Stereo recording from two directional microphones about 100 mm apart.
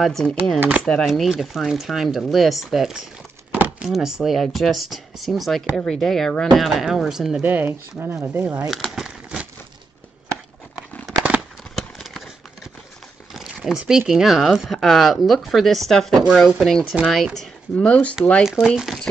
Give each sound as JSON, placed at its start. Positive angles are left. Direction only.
{"t": 0.0, "sound": "speech", "side_deg": 5}
{"t": 0.6, "sound": "speech", "side_deg": -15}
{"t": 1.0, "sound": "speech", "side_deg": 0}
{"t": 3.5, "sound": "a sound", "side_deg": -15}
{"t": 3.9, "sound": "speech", "side_deg": -5}
{"t": 7.4, "sound": "speech", "side_deg": -20}
{"t": 8.6, "sound": "crumpling", "side_deg": 0}
{"t": 11.7, "sound": "a sound", "side_deg": 0}
{"t": 13.3, "sound": "speech", "side_deg": -5}
{"t": 18.4, "sound": "speech", "side_deg": -5}